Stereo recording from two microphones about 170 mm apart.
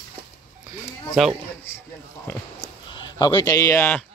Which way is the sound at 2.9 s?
25° left (ahead or behind).